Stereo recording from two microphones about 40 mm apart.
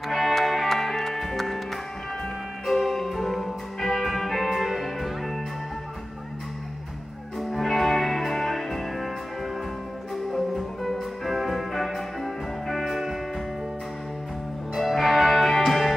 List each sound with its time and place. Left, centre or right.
0.1 s music: centre
7.3 s music: centre
10.3 s music: centre
14.8 s music: centre